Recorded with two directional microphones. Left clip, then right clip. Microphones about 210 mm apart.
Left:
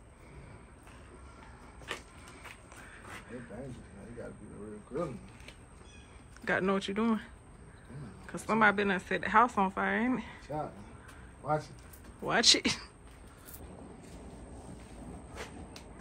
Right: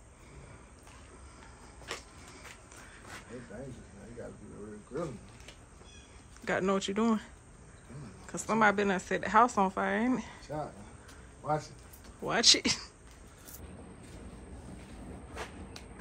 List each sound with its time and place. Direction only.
2.4 s a sound: 5° right (ahead or behind)
4.9 s speech: centre (ahead or behind)
6.4 s speech: 5° right (ahead or behind)
8.3 s speech: 5° right (ahead or behind)
11.4 s speech: 15° right (ahead or behind)
12.2 s speech: centre (ahead or behind)